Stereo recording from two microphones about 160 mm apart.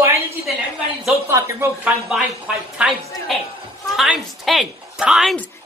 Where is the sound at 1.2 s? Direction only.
15° right (ahead or behind).